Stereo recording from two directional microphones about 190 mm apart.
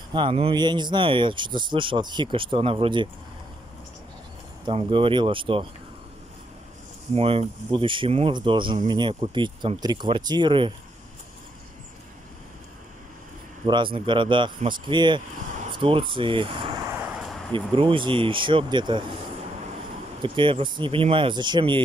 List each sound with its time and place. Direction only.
0.1 s speech: 25° right (ahead or behind)
4.6 s speech: 25° right (ahead or behind)
7.2 s speech: 30° right (ahead or behind)
13.7 s speech: 25° right (ahead or behind)
20.2 s speech: 25° right (ahead or behind)